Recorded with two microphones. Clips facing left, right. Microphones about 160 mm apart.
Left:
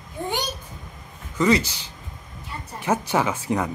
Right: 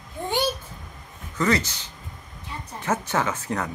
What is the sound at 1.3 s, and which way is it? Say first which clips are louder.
Speech: left 3 dB; 15° left (ahead or behind).